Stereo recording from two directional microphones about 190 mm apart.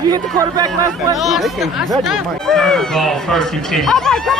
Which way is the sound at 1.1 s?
Centre (ahead or behind).